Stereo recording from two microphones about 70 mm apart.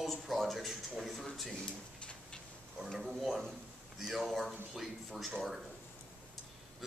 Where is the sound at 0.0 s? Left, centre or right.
Centre.